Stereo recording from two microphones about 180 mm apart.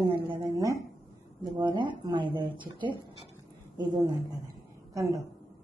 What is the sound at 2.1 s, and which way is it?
Speech, 25° right (ahead or behind).